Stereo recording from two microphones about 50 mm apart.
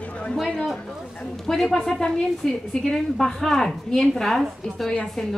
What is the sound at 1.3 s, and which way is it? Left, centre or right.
A woman's voice, centre.